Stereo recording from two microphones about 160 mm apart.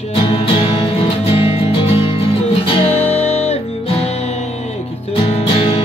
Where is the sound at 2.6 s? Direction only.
40° left (ahead or behind).